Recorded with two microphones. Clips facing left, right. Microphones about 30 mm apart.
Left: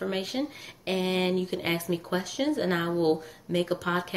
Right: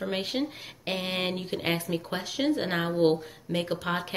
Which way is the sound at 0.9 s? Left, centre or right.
Right.